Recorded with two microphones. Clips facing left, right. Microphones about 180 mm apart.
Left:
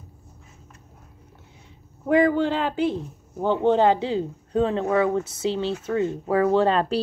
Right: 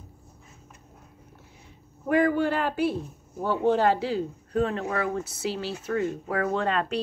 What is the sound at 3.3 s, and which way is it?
Speech, 20° left (ahead or behind).